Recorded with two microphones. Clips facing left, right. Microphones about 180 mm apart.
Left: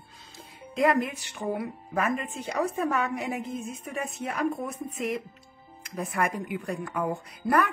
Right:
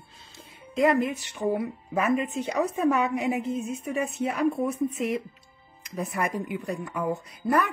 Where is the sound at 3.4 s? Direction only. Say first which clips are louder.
Right 5 dB; 30° right (ahead or behind).